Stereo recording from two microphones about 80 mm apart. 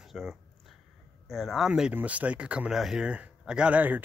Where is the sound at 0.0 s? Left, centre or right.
Centre.